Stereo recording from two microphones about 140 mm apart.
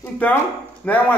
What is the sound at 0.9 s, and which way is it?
Speech, 10° left (ahead or behind).